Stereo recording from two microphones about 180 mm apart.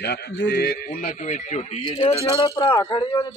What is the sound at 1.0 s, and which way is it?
Speech, 40° left (ahead or behind).